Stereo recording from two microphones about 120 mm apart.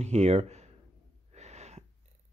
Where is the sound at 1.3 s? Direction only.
70° right (ahead or behind).